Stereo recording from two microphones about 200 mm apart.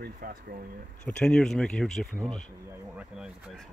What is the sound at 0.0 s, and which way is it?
Speech, 45° right (ahead or behind).